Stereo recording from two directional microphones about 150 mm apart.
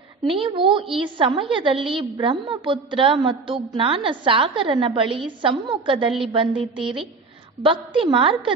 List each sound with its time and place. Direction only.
0.3 s a woman's voice: 35° right (ahead or behind)